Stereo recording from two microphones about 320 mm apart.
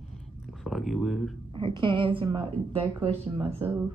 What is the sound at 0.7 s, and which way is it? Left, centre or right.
Speech, centre.